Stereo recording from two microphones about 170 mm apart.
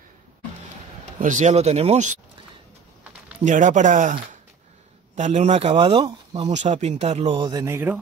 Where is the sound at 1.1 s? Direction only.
45° right (ahead or behind).